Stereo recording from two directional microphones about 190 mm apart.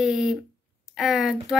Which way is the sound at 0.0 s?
5° right (ahead or behind).